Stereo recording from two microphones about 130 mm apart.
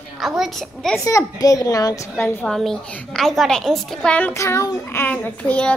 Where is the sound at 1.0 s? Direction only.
25° left (ahead or behind).